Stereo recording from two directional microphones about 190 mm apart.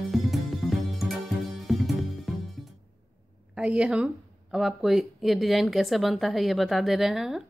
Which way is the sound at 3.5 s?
5° right (ahead or behind).